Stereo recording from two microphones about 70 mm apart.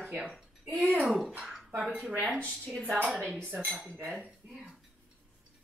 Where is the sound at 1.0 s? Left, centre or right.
Centre.